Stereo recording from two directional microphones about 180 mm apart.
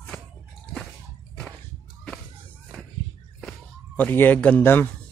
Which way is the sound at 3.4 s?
5° left (ahead or behind).